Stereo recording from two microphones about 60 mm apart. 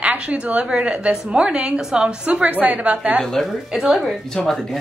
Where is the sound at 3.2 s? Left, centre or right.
Centre.